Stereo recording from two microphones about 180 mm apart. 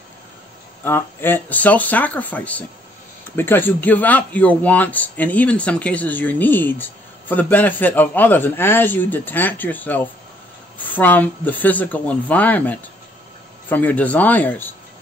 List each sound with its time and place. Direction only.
0.8 s speech: 10° left (ahead or behind)